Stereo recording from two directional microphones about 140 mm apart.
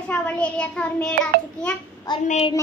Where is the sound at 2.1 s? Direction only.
30° left (ahead or behind).